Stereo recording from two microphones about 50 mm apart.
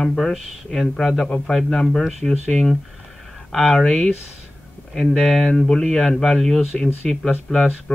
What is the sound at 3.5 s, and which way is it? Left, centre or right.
Speech, centre.